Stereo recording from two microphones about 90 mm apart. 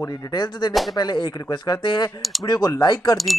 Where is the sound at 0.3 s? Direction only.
55° left (ahead or behind).